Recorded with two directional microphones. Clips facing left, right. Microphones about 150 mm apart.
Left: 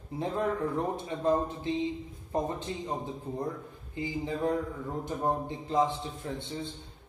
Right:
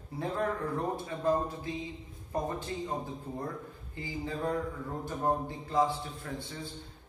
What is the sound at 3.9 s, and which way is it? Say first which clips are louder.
A man's voice: left 4 dB; 20° left (ahead or behind).